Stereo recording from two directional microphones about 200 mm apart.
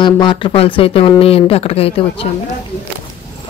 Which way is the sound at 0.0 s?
25° left (ahead or behind).